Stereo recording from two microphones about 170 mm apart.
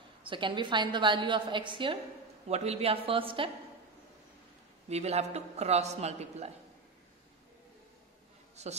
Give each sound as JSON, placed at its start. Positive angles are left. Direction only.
{"t": 0.2, "sound": "a woman's voice", "side_deg": -30}
{"t": 2.4, "sound": "a man's voice", "side_deg": -40}
{"t": 4.8, "sound": "a man's voice", "side_deg": -40}
{"t": 8.6, "sound": "a man's voice", "side_deg": -40}